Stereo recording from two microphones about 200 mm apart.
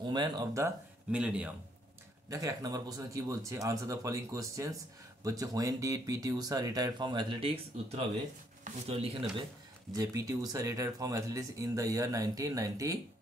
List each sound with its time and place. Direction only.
0.0 s speech: 20° right (ahead or behind); by 1.5 s 5° right (ahead or behind)
2.2 s speech: 20° right (ahead or behind)
9.9 s speech: 15° right (ahead or behind)